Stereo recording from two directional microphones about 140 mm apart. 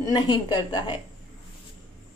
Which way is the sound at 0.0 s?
35° left (ahead or behind).